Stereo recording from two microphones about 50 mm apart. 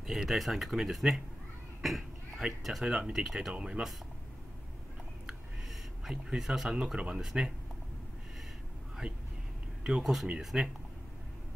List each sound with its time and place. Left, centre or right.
0.0 s speech: centre
3.5 s speech: right
6.0 s speech: centre
9.0 s speech: right
9.8 s speech: centre